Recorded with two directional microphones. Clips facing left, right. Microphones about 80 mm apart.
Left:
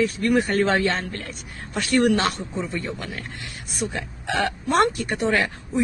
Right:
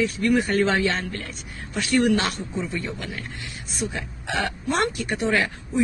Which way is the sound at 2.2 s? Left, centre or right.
Left.